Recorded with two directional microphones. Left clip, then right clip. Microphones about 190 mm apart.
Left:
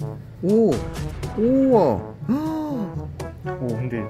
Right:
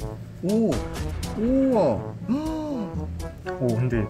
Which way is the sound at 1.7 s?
35° left (ahead or behind).